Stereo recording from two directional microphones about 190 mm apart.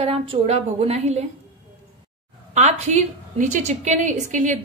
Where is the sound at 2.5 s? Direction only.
35° right (ahead or behind).